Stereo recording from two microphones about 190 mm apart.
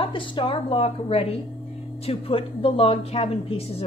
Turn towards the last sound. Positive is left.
turn(degrees=30)  # may be behind; listen again after turning